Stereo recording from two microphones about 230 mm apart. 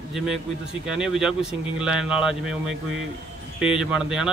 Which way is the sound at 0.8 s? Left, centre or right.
Centre.